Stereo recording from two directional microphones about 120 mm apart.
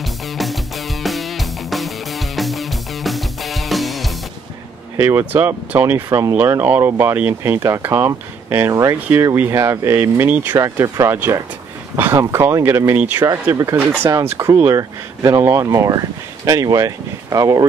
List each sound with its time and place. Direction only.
0.0 s music: centre (ahead or behind)
4.9 s speech: 20° right (ahead or behind)
6.0 s speech: 30° right (ahead or behind)
6.3 s speech: 20° right (ahead or behind)